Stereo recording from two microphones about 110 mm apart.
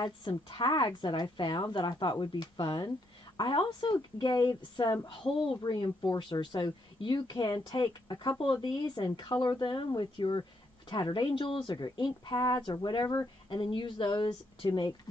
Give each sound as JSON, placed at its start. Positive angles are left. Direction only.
{"t": 0.0, "sound": "a woman's voice", "side_deg": 40}